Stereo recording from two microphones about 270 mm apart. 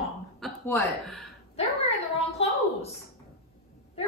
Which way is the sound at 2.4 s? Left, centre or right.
Left.